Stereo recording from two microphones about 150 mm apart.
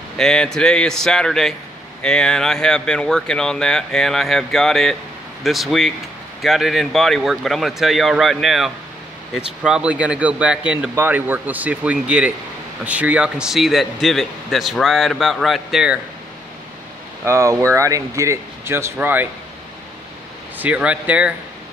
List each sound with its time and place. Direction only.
0.2 s a man's voice: 5° left (ahead or behind)
17.2 s speech: 20° right (ahead or behind)
20.5 s speech: 10° right (ahead or behind)